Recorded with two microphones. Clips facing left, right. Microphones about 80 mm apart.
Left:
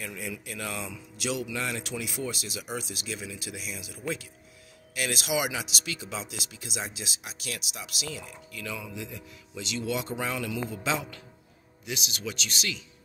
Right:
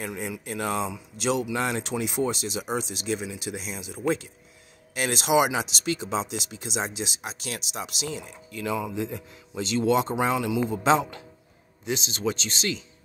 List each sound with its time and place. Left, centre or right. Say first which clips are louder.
0.0 s speech: right 5 dB; right
10.1 s speech: right 7 dB; right